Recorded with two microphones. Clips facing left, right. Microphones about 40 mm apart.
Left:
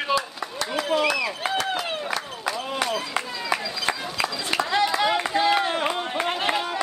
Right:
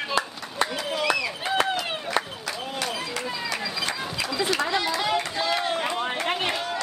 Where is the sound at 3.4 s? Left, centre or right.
Left.